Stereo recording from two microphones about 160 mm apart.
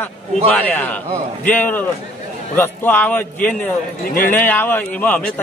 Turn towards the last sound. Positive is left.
turn(degrees=10)  # may be behind; listen again after turning